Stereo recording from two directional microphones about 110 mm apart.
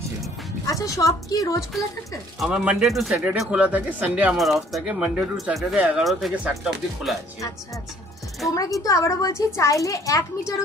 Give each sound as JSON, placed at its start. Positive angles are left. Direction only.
{"t": 0.7, "sound": "a child's voice", "side_deg": 30}
{"t": 2.4, "sound": "speech", "side_deg": -10}
{"t": 4.4, "sound": "speech", "side_deg": 0}
{"t": 8.5, "sound": "a child's voice", "side_deg": 30}